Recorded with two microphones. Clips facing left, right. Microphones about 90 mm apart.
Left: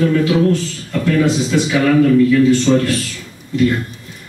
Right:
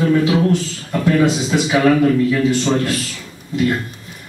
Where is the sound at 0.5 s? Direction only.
20° right (ahead or behind).